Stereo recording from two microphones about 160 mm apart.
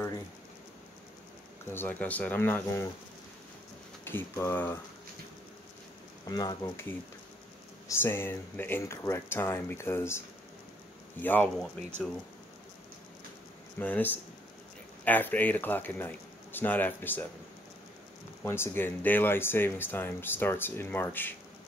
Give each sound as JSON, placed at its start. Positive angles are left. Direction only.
{"t": 1.7, "sound": "speech", "side_deg": 10}
{"t": 4.0, "sound": "speech", "side_deg": 15}
{"t": 6.2, "sound": "speech", "side_deg": 25}
{"t": 8.0, "sound": "speech", "side_deg": 15}
{"t": 13.7, "sound": "speech", "side_deg": 10}
{"t": 18.4, "sound": "speech", "side_deg": 15}